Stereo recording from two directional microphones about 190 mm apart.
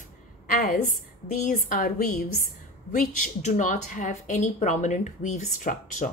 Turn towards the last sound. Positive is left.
turn(degrees=40)  # may be behind; listen again after turning